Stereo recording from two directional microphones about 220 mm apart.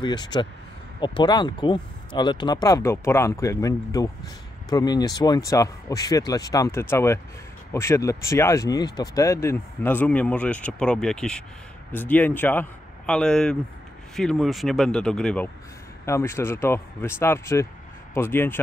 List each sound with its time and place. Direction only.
0.0 s speech: 20° left (ahead or behind)